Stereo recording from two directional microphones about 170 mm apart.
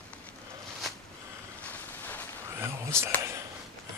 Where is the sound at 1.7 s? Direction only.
10° left (ahead or behind).